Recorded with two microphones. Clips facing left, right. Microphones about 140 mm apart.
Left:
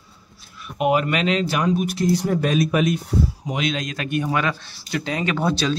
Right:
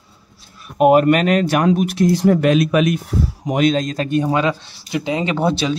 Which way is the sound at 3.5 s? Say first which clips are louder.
Right 8 dB; 45° right (ahead or behind).